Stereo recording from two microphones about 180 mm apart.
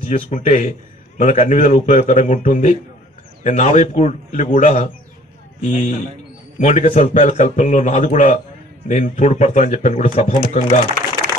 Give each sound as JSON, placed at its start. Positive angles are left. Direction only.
{"t": 0.0, "sound": "a man's voice", "side_deg": 35}